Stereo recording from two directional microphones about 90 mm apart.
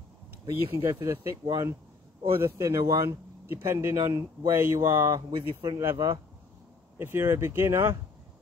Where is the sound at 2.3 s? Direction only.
30° right (ahead or behind).